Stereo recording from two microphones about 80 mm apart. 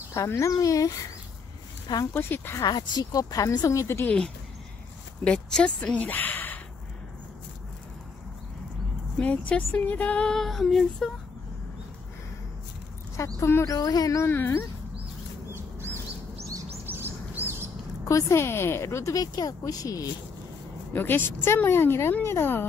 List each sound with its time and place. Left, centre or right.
0.1 s a woman's voice: left
2.1 s a woman's voice: left
2.6 s a woman's voice: left
5.2 s speech: centre
9.2 s music: centre
10.3 s female singing: centre
13.2 s a woman's voice: left
14.2 s a woman's voice: left
16.8 s bird: right
18.0 s a woman's voice: left
19.1 s a woman's voice: left
20.9 s a woman's voice: left